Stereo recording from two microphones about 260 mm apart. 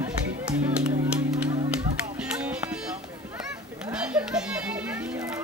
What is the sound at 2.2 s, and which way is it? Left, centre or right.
Music, centre.